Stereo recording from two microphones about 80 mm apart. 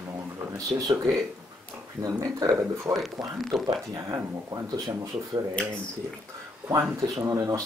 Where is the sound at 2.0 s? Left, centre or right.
Right.